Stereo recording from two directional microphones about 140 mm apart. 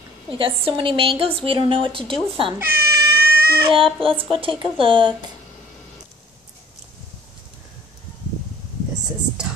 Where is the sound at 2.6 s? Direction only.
90° right.